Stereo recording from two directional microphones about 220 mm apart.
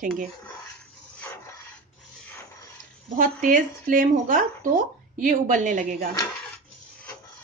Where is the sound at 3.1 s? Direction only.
40° right (ahead or behind).